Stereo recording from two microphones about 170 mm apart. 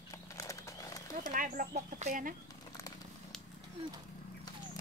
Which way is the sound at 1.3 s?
55° right (ahead or behind).